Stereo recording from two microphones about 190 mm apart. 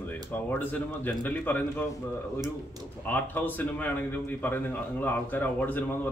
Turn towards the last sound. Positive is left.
turn(degrees=10)  # may be behind; listen again after turning